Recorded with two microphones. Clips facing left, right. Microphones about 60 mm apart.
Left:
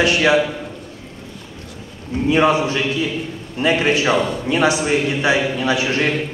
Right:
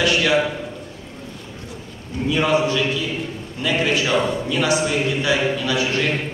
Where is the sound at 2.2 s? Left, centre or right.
Left.